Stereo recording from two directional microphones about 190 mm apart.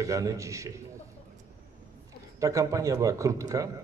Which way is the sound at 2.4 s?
15° right (ahead or behind).